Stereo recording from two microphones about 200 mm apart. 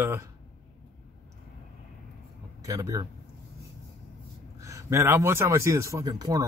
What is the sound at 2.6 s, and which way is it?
Speech, 15° right (ahead or behind).